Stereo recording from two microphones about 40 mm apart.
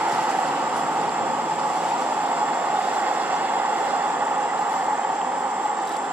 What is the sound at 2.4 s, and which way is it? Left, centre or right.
Vehicle, right.